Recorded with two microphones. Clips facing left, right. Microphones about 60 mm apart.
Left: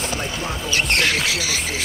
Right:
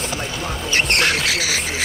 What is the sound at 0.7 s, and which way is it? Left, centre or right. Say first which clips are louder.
Speech: right 2 dB; right.